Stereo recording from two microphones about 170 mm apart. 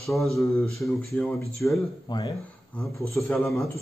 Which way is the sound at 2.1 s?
25° left (ahead or behind).